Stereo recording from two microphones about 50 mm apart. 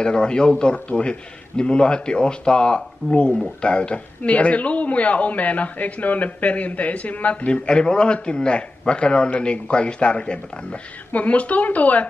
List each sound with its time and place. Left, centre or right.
0.0 s a man's voice: centre